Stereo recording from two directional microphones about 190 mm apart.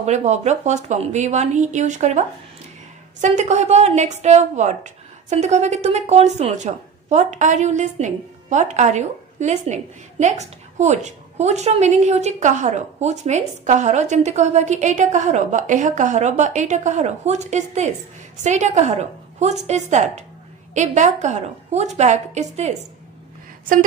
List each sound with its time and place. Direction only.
0.0 s a woman's voice: 35° right (ahead or behind)